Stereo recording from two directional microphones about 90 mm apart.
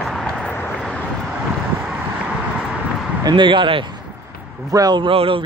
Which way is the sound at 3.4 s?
65° right (ahead or behind).